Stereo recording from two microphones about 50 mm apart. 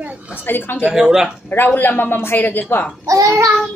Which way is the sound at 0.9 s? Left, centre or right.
Centre.